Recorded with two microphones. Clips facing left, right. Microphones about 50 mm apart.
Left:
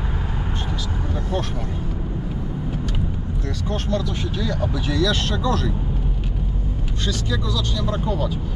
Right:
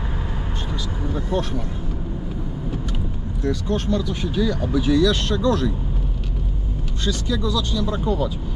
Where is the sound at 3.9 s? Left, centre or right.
Centre.